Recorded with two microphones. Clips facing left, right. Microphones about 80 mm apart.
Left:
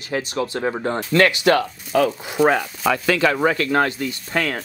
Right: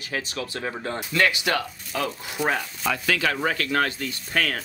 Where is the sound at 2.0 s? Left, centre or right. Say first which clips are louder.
Left 7 dB; left.